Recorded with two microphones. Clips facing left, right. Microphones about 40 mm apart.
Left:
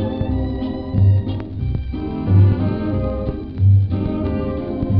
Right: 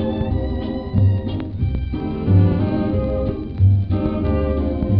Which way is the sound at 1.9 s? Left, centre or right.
Centre.